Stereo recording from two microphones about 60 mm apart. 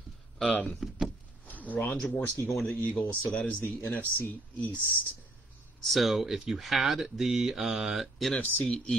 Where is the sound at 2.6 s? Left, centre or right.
Left.